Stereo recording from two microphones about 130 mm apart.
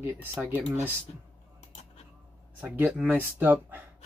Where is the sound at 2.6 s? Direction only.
10° right (ahead or behind).